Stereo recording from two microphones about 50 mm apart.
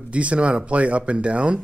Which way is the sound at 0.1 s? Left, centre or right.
Right.